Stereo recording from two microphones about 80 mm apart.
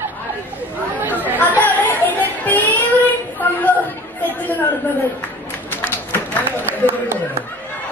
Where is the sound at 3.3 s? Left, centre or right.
Left.